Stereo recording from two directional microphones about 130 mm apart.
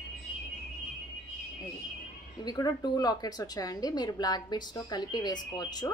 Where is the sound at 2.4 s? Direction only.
30° left (ahead or behind).